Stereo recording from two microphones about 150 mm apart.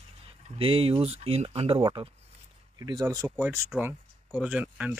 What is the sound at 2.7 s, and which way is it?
Speech, 25° right (ahead or behind).